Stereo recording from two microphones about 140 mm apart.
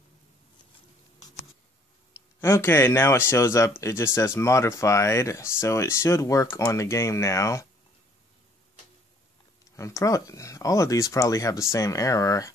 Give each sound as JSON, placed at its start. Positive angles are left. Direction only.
{"t": 2.1, "sound": "speech", "side_deg": 20}
{"t": 9.8, "sound": "speech", "side_deg": 25}